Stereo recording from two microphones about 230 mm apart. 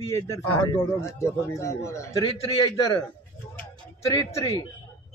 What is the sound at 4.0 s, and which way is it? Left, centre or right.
Speech, centre.